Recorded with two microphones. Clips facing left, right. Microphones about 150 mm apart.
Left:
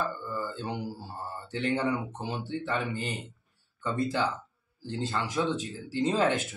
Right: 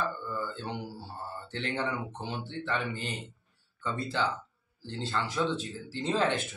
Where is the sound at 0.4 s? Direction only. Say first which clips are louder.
Left 4 dB; 10° left (ahead or behind).